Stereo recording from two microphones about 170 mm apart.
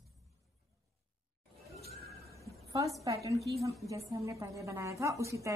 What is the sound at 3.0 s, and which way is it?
A woman's voice, 20° right (ahead or behind).